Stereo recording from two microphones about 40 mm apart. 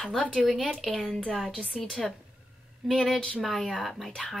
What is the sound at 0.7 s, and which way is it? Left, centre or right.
Speech, centre.